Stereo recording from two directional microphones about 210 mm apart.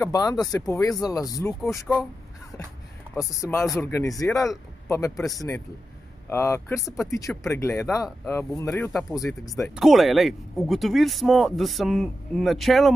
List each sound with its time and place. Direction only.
0.0 s speech: 15° left (ahead or behind)
1.9 s speech: centre (ahead or behind)
3.2 s speech: 15° left (ahead or behind)
9.8 s speech: centre (ahead or behind)